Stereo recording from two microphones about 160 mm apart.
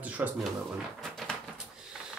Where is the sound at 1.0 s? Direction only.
5° left (ahead or behind).